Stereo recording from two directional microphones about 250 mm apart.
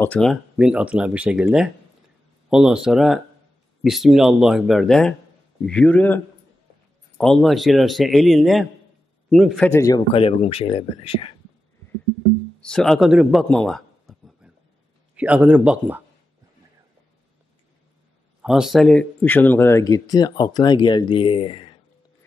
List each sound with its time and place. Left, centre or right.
0.0 s speech: centre
9.7 s speech: centre
12.5 s a sound: centre
15.1 s speech: centre
18.4 s speech: centre; by 21.7 s left